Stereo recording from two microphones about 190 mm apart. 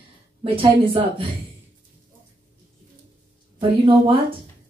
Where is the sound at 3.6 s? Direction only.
25° right (ahead or behind).